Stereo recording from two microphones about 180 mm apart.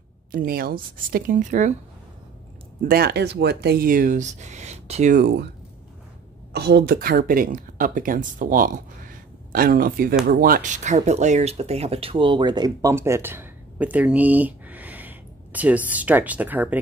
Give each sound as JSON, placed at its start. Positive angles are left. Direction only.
{"t": 0.3, "sound": "speech", "side_deg": -55}
{"t": 2.9, "sound": "speech", "side_deg": -65}
{"t": 5.1, "sound": "speech", "side_deg": -65}
{"t": 6.5, "sound": "speech", "side_deg": -65}